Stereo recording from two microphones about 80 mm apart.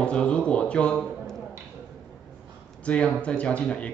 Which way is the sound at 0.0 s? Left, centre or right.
Centre.